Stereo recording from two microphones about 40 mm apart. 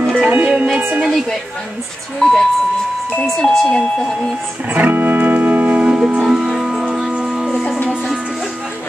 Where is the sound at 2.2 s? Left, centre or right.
Centre.